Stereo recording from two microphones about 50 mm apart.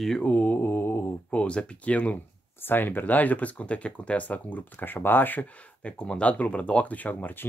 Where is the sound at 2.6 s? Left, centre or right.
Left.